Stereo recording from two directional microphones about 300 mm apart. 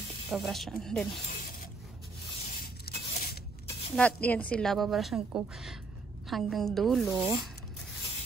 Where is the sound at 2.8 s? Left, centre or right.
Left.